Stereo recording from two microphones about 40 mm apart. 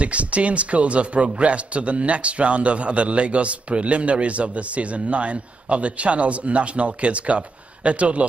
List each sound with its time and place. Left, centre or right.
0.0 s a man's voice: right